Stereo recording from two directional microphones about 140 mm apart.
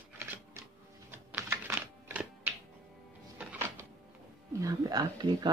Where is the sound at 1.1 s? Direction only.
15° right (ahead or behind).